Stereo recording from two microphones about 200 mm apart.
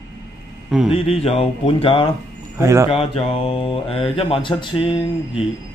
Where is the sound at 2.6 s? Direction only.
15° right (ahead or behind).